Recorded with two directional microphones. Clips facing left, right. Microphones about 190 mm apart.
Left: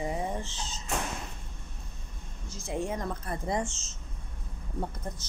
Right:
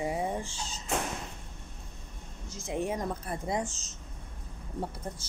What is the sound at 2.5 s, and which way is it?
Speech, 20° right (ahead or behind).